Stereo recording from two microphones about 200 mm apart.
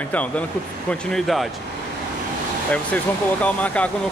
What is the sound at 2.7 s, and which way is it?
Speech, 5° left (ahead or behind).